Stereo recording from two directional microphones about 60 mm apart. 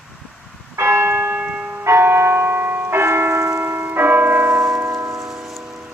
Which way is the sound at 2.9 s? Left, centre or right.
Right.